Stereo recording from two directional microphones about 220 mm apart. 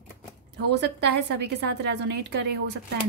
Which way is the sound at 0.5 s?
50° right (ahead or behind).